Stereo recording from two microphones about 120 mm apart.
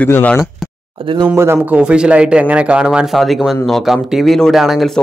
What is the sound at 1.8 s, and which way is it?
Speech, 10° right (ahead or behind).